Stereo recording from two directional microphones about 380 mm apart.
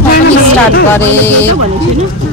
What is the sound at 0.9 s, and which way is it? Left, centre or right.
Speech, centre.